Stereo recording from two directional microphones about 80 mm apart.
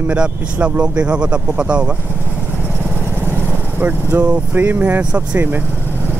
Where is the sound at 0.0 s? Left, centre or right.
Centre.